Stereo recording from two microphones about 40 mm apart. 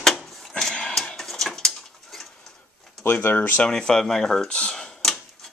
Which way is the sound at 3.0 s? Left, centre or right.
Left.